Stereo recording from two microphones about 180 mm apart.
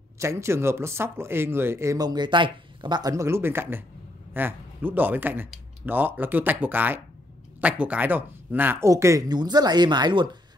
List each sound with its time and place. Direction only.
0.2 s speech: 15° right (ahead or behind)